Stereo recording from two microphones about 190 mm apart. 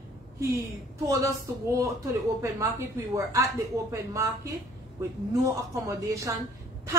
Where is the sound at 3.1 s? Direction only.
15° right (ahead or behind).